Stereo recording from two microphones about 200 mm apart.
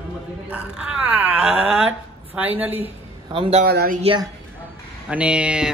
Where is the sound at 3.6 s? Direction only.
50° right (ahead or behind).